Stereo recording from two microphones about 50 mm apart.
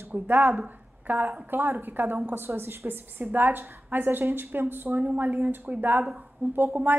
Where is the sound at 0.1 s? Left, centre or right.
Right.